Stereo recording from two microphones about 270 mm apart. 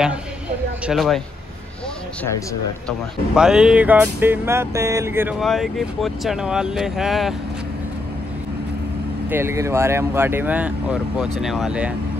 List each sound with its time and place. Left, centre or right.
0.8 s music: centre
3.3 s music: centre
9.3 s speech: centre
11.4 s music: centre